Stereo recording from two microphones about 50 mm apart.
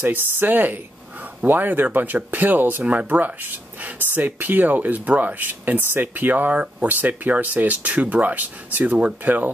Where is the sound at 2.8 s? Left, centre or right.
Right.